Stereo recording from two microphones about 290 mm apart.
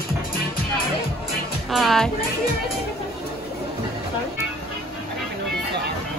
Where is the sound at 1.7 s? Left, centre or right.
Centre.